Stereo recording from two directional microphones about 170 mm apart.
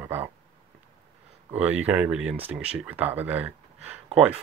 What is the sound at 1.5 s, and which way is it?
Speech, 10° right (ahead or behind).